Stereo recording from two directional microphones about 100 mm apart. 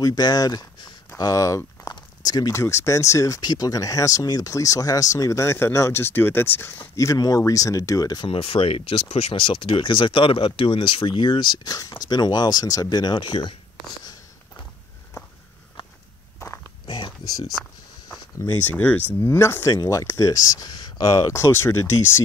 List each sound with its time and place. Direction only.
0.0 s speech: 40° left (ahead or behind)
7.2 s speech: 35° left (ahead or behind)
8.3 s speech: 65° left (ahead or behind)
9.3 s speech: 60° left (ahead or behind)
16.8 s a sound: 55° left (ahead or behind)
18.7 s speech: 15° left (ahead or behind)